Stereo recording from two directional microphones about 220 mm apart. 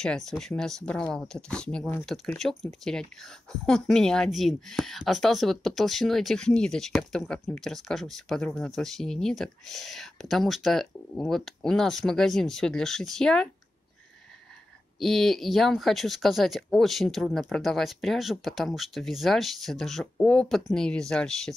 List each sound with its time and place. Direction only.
0.0 s speech: centre (ahead or behind)
15.0 s speech: centre (ahead or behind)